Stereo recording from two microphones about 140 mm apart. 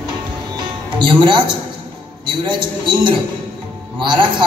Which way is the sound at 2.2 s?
35° right (ahead or behind).